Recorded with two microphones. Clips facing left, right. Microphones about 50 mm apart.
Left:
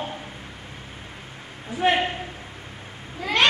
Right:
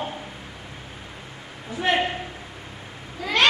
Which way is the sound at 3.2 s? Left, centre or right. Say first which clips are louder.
Even; centre.